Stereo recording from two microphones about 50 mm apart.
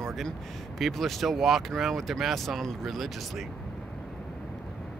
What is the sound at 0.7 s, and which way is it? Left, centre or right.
Speech, centre.